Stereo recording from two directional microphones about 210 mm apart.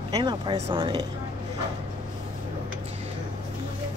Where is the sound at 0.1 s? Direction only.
20° right (ahead or behind).